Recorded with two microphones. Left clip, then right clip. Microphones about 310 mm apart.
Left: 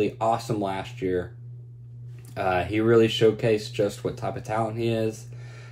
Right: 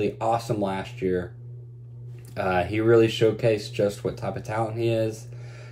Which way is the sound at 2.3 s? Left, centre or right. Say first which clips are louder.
Even; centre.